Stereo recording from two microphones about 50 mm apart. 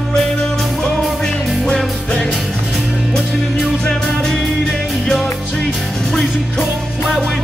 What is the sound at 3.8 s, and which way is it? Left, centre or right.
Music, centre.